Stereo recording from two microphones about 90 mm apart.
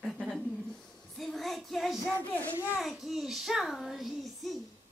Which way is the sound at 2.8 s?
5° right (ahead or behind).